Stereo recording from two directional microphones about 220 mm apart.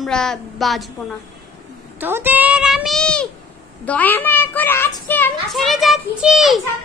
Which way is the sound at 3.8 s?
5° left (ahead or behind).